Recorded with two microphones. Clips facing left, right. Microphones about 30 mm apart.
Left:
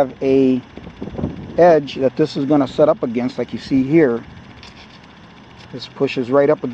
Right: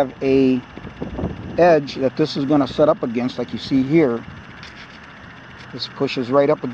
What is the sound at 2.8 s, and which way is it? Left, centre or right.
Speech, centre.